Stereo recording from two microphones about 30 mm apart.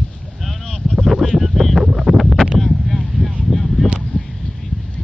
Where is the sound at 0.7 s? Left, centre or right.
Centre.